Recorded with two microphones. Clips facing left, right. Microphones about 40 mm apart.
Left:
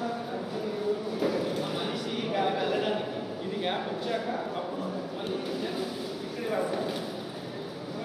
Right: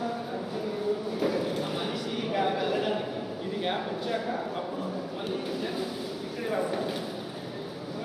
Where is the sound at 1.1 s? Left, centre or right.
Right.